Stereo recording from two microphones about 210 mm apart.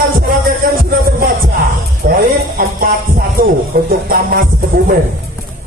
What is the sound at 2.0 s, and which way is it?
Speech, 45° right (ahead or behind).